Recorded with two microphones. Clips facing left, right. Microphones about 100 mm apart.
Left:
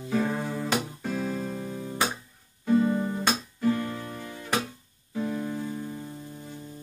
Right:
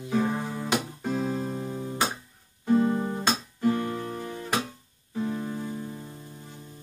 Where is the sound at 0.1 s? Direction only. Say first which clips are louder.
Even; 15° right (ahead or behind).